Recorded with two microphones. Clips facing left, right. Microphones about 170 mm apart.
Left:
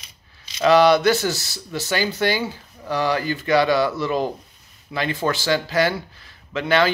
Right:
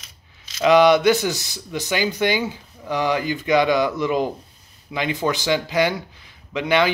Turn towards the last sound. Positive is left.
turn(degrees=-15)  # may be behind; listen again after turning